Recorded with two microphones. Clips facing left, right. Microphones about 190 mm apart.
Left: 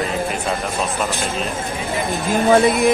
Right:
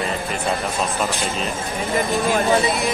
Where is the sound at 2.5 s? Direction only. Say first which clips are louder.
Left 5 dB; 50° left (ahead or behind).